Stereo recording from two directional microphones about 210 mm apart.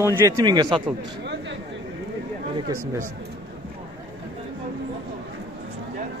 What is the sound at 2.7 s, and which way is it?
Speech, 15° right (ahead or behind).